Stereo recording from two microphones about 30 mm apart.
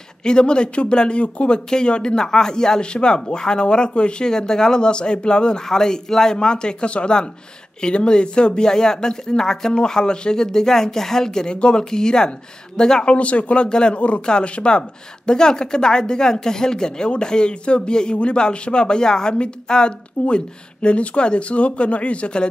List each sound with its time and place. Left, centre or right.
0.2 s speech: left
1.7 s a woman's voice: left
2.2 s a woman's voice: centre
2.8 s speech: left
4.3 s a woman's voice: left
5.7 s a woman's voice: centre
6.3 s speech: left
8.6 s a woman's voice: left
13.0 s speech: left
13.7 s speech: left
13.9 s speech: left
14.8 s a woman's voice: left